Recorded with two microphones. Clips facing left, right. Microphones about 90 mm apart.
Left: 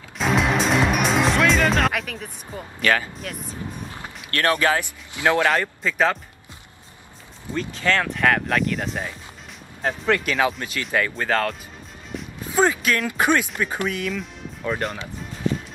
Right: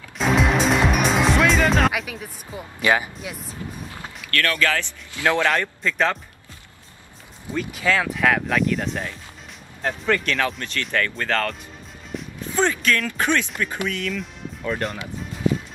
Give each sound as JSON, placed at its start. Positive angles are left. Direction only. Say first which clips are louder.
{"t": 0.2, "sound": "music", "louder": "right 1 dB", "side_deg": 0}
{"t": 3.2, "sound": "speech", "louder": "left 1 dB", "side_deg": -5}
{"t": 4.2, "sound": "speech", "louder": "left 2 dB", "side_deg": 25}
{"t": 5.5, "sound": "speech", "louder": "left 1 dB", "side_deg": 5}
{"t": 7.5, "sound": "speech", "louder": "even", "side_deg": -5}
{"t": 14.1, "sound": "speech", "louder": "even", "side_deg": 5}